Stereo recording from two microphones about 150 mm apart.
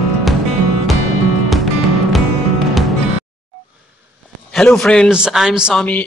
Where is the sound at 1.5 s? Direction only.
Centre (ahead or behind).